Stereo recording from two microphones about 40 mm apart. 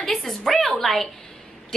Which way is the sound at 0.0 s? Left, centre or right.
Centre.